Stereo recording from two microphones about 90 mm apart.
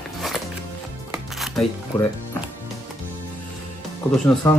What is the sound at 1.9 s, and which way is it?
Speech, 20° left (ahead or behind).